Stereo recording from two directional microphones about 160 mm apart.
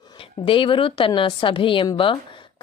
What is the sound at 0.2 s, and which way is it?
A woman's voice, 35° left (ahead or behind).